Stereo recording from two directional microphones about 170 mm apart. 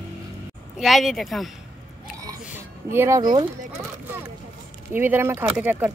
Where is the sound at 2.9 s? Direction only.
15° right (ahead or behind).